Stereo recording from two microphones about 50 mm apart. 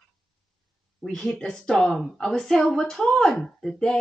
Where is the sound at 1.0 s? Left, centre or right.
Centre.